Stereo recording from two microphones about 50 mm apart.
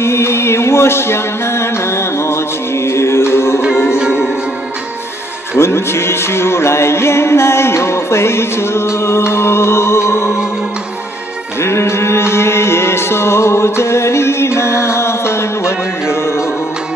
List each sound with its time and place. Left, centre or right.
0.0 s music: left
4.0 s music: centre
5.6 s music: left
11.6 s music: left